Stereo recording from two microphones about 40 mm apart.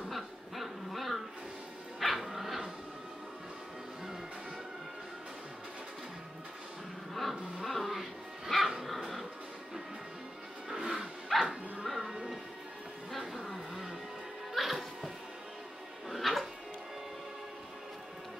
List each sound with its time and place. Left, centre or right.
0.1 s a sound: centre
2.0 s dog: centre
7.2 s dog: centre
10.7 s music: centre
11.3 s bow-wow: centre
11.8 s music: centre
13.2 s vehicle: centre
14.5 s music: centre
16.1 s music: centre